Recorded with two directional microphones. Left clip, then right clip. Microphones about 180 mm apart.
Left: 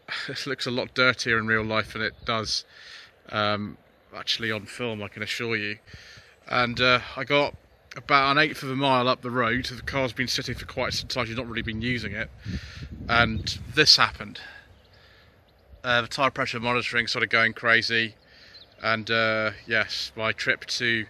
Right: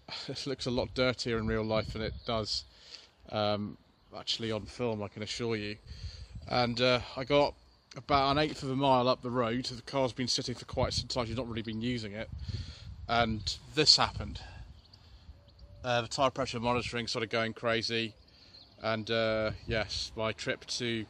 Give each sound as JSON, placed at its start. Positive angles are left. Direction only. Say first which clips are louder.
{"t": 0.0, "sound": "speech", "louder": "left 8 dB", "side_deg": 0}
{"t": 15.8, "sound": "speech", "louder": "left 6 dB", "side_deg": 5}